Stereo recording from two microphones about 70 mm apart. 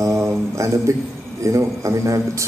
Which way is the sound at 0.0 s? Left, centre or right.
Right.